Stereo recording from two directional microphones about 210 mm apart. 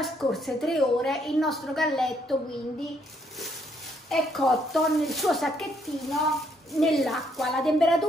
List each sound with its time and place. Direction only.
0.0 s a woman's voice: centre (ahead or behind)
4.1 s a woman's voice: centre (ahead or behind)